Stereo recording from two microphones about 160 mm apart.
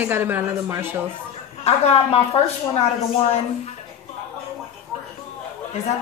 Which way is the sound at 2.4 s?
40° left (ahead or behind).